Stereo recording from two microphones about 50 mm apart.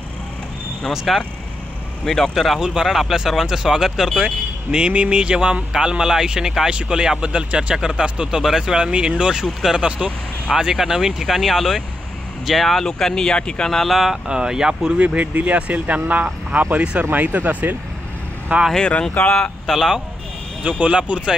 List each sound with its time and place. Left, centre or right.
1.1 s speech: centre
4.6 s speech: centre
13.7 s speech: centre
13.9 s speech: centre
15.0 s speech: right
17.1 s speech: right
18.8 s speech: left
19.6 s speech: centre
20.8 s speech: right